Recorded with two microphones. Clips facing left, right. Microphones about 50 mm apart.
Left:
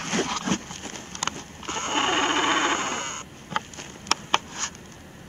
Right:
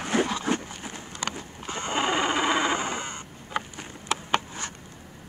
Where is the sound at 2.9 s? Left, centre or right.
Left.